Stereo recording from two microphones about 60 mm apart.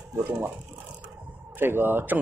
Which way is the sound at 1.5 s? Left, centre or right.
Right.